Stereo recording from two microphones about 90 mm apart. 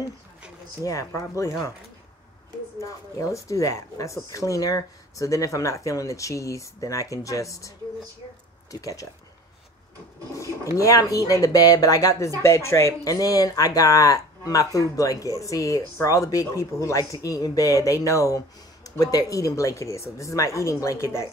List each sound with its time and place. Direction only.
0.8 s speech: 35° left (ahead or behind)
2.8 s speech: 35° left (ahead or behind)
10.3 s speech: 35° left (ahead or behind)